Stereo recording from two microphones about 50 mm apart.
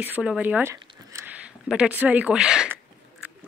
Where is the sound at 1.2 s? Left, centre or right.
Right.